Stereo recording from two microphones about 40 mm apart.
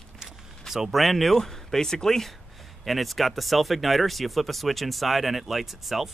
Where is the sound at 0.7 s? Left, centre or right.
Centre.